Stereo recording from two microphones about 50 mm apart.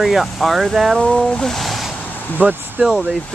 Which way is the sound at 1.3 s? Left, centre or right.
Centre.